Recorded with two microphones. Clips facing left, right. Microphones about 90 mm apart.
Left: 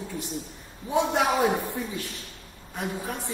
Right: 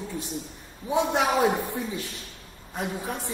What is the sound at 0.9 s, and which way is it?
A man's voice, 10° right (ahead or behind).